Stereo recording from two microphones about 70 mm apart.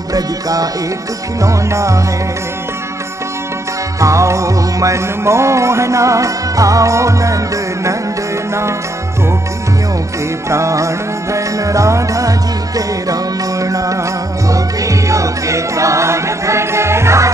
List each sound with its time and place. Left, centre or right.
0.1 s music: right
1.4 s music: right
4.0 s music: right
10.5 s music: right